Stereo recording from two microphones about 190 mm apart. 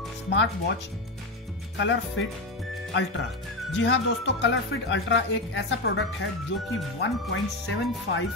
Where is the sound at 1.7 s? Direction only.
70° left (ahead or behind).